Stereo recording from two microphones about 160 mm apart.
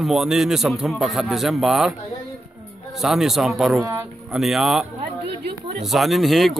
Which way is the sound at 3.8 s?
20° right (ahead or behind).